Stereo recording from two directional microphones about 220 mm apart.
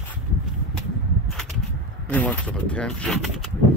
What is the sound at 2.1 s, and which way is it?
Speech, 5° left (ahead or behind).